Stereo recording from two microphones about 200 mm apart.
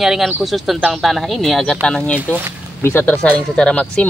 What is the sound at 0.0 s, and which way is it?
Speech, centre (ahead or behind).